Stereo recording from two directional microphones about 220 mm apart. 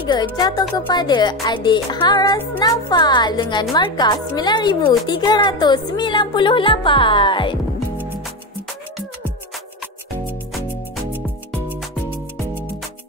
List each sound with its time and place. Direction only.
0.1 s music: 20° left (ahead or behind)
12.1 s music: 10° right (ahead or behind)